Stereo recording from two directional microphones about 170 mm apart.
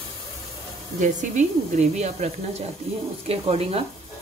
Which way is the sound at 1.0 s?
45° right (ahead or behind).